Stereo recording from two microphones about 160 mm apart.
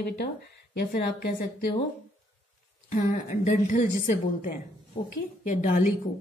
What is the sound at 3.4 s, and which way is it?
A woman's voice, 60° left (ahead or behind).